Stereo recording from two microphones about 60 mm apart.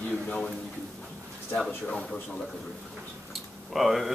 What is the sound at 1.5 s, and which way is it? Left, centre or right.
Speech, centre.